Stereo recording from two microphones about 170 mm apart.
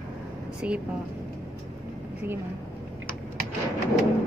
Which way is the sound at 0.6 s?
10° right (ahead or behind).